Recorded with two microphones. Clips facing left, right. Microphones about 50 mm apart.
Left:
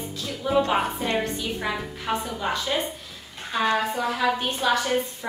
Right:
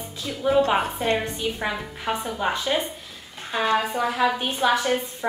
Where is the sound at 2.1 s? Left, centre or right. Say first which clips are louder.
Right 2 dB; centre.